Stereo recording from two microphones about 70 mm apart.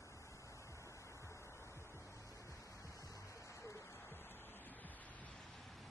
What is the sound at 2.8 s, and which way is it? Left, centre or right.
Music, left.